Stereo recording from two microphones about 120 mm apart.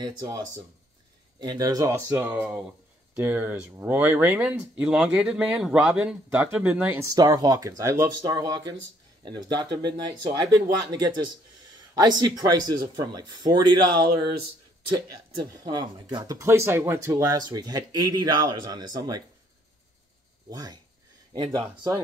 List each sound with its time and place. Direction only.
0.0 s speech: 35° right (ahead or behind)
1.4 s speech: 35° right (ahead or behind)
2.1 s speech: 15° right (ahead or behind)
7.0 s speech: 30° right (ahead or behind)
20.4 s speech: 30° right (ahead or behind)